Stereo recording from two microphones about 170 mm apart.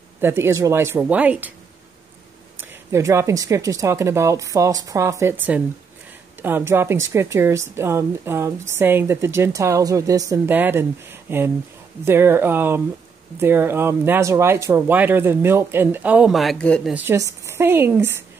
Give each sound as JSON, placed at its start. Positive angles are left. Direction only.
{"t": 0.2, "sound": "a woman's voice", "side_deg": -15}
{"t": 2.9, "sound": "a woman's voice", "side_deg": -15}
{"t": 16.9, "sound": "a woman's voice", "side_deg": -15}